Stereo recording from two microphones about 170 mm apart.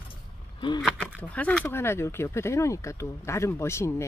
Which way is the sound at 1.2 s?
10° left (ahead or behind).